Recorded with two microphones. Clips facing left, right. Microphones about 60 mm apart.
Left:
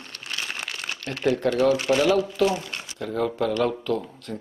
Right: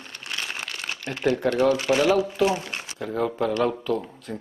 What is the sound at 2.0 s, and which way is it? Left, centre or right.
Speech, centre.